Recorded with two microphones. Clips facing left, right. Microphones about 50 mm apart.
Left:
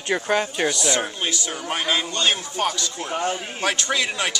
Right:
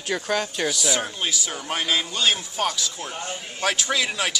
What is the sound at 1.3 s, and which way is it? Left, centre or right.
Speech, centre.